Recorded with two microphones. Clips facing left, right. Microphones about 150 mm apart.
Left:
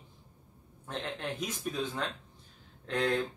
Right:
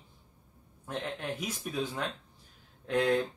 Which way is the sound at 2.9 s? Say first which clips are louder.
Right 3 dB; 10° right (ahead or behind).